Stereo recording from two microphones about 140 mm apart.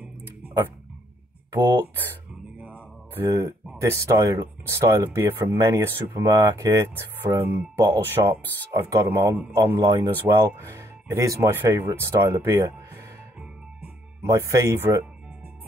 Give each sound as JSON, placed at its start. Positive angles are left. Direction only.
{"t": 0.0, "sound": "a sound", "side_deg": -15}
{"t": 2.6, "sound": "mantra", "side_deg": -10}
{"t": 3.3, "sound": "speech", "side_deg": -20}
{"t": 14.2, "sound": "speech", "side_deg": -20}